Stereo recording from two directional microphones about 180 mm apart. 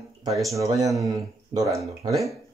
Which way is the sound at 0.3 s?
Centre (ahead or behind).